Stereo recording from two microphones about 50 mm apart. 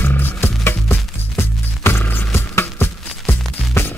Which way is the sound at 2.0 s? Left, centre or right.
Left.